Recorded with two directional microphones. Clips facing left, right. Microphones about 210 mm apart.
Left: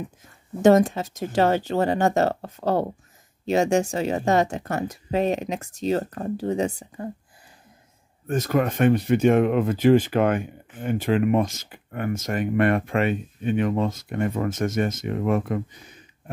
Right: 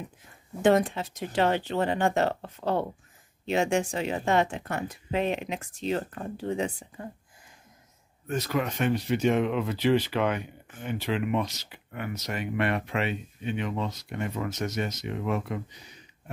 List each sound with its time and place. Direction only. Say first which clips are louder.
0.6 s speech: left 6 dB; 45° left (ahead or behind)
8.3 s speech: left 6 dB; 50° left (ahead or behind)